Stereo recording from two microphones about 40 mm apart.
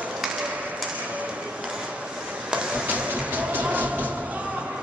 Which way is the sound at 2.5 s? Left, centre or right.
Right.